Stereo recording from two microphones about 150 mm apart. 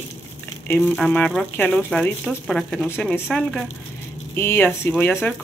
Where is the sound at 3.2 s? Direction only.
5° left (ahead or behind).